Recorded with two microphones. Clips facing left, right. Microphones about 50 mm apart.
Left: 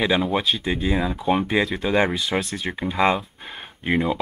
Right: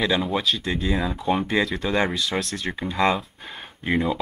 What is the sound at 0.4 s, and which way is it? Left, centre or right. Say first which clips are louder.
Speech: left 1 dB; centre.